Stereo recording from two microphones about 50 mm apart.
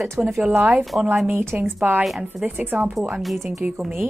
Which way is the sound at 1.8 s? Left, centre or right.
Right.